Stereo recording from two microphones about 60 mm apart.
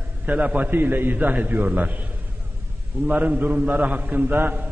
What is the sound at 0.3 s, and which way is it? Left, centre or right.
A man's voice, right.